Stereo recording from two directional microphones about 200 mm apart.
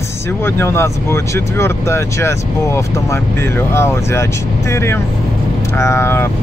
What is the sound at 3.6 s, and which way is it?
Speech, 10° left (ahead or behind).